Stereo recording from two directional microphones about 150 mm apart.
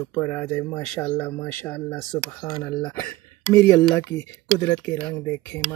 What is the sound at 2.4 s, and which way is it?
Speech, 30° left (ahead or behind).